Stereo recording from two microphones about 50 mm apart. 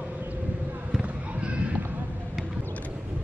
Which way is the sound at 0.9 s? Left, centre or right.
Right.